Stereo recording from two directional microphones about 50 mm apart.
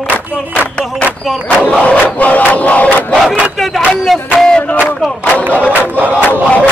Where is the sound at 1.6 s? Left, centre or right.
Left.